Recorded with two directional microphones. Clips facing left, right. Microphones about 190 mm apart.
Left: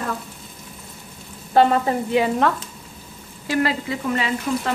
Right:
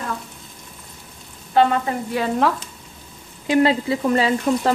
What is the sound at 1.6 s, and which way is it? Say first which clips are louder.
Frying: left 1 dB; 40° left (ahead or behind).